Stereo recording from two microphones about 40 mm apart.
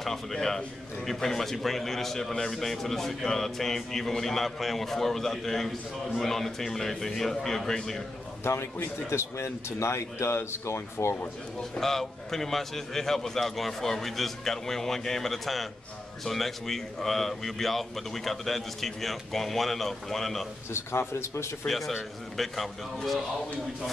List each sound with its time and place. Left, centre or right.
0.0 s a man's voice: centre
8.5 s speech: left
11.8 s a man's voice: centre
20.7 s speech: left
21.6 s speech: centre